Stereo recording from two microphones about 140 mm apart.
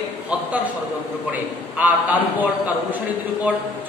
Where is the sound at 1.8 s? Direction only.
10° right (ahead or behind).